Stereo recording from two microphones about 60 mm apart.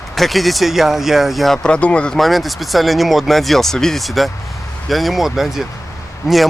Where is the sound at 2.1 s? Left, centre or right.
Centre.